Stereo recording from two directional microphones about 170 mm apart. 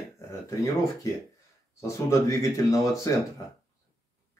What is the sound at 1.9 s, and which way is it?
Speech, 15° left (ahead or behind).